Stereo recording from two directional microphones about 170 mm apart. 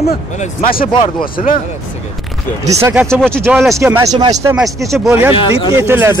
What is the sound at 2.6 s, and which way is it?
Speech, 20° right (ahead or behind).